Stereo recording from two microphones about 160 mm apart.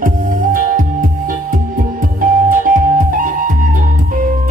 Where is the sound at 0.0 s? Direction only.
60° right (ahead or behind).